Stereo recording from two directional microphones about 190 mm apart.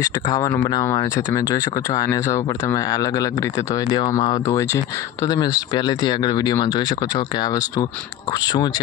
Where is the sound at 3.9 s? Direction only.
25° left (ahead or behind).